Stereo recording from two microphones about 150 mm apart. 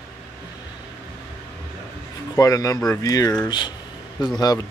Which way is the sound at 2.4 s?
25° left (ahead or behind).